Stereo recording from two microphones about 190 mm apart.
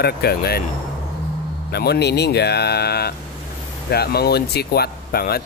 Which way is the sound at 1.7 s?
60° left (ahead or behind).